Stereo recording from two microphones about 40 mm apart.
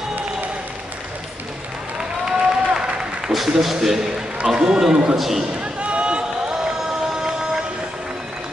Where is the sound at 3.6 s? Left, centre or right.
Centre.